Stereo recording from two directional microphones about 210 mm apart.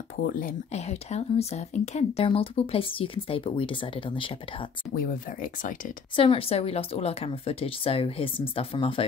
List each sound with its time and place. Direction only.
0.3 s speech: 40° left (ahead or behind); by 4.6 s 25° left (ahead or behind)
4.9 s speech: 40° left (ahead or behind)
6.1 s speech: 25° left (ahead or behind)